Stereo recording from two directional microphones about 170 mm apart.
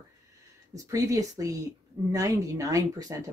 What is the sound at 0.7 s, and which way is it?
Speech, 20° right (ahead or behind).